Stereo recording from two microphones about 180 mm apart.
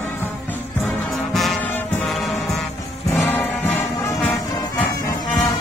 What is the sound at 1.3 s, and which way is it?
Music, centre (ahead or behind).